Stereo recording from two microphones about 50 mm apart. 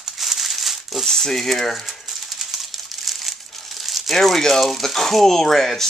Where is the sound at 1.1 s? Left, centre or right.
Centre.